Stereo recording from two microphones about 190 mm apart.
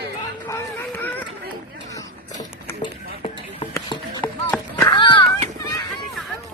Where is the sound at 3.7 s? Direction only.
25° left (ahead or behind).